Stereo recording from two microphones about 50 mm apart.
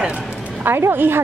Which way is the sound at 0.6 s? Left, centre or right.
Right.